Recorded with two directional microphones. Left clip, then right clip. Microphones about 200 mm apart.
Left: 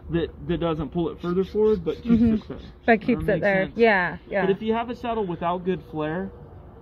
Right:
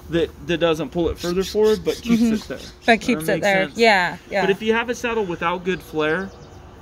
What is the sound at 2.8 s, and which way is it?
Speech, 5° right (ahead or behind).